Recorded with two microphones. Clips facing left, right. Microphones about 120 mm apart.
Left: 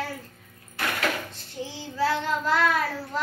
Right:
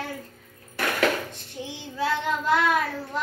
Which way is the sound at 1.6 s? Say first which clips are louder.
Left 2 dB; 20° right (ahead or behind).